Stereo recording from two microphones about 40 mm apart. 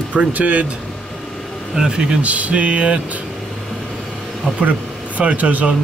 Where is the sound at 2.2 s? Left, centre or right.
Right.